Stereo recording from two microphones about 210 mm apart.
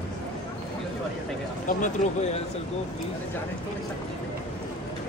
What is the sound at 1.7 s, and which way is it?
Speech, 35° left (ahead or behind).